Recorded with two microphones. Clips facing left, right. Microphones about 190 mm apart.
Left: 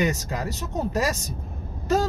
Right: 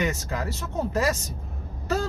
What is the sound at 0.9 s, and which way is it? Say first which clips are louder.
Speech: right 1 dB; 15° left (ahead or behind).